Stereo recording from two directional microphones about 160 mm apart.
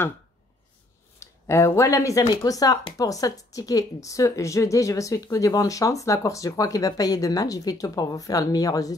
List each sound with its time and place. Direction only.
1.2 s speech: 20° left (ahead or behind)